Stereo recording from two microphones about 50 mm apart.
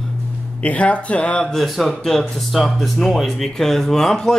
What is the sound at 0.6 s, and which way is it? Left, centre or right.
Speech, left.